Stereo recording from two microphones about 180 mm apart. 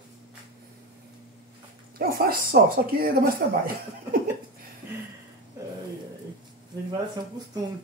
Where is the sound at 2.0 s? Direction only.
55° right (ahead or behind).